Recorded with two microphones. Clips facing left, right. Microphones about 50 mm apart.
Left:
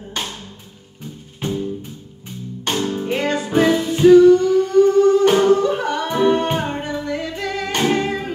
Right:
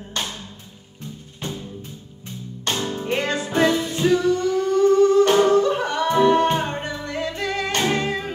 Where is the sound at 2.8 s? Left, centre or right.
Centre.